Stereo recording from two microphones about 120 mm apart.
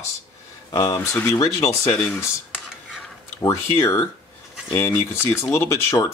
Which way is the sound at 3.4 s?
25° left (ahead or behind).